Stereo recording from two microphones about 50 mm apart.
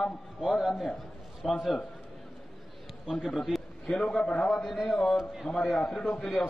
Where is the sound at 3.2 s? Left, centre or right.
Centre.